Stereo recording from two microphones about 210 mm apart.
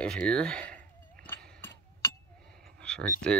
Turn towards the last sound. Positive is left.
turn(degrees=5)  # may be behind; listen again after turning